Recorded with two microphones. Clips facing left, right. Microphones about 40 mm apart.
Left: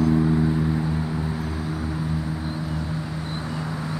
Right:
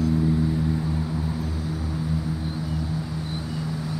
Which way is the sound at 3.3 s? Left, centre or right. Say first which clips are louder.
Left 1 dB; centre.